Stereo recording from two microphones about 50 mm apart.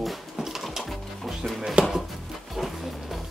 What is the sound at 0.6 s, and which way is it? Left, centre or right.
Music, centre.